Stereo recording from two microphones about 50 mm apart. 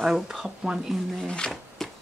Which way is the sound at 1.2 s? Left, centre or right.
Centre.